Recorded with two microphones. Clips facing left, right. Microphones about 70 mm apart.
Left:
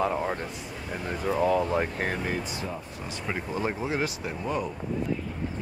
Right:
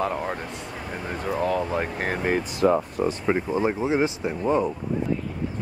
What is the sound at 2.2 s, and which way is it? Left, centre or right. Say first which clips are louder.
Speech: right 10 dB; right.